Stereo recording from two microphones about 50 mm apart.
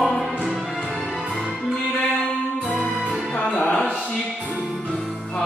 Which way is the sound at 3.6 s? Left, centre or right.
Left.